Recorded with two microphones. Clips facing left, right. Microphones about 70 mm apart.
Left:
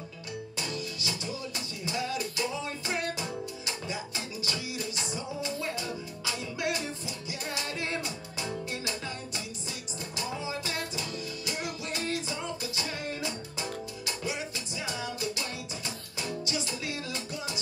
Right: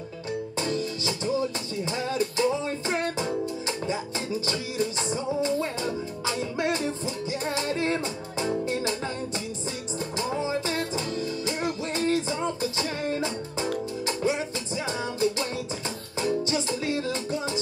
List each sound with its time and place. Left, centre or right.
0.6 s music: right
10.1 s music: right